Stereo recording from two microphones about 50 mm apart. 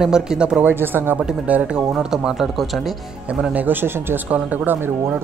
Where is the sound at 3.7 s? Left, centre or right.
Right.